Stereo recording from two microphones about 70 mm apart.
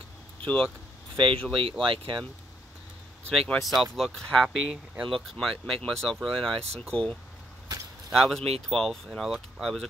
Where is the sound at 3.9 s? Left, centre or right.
Centre.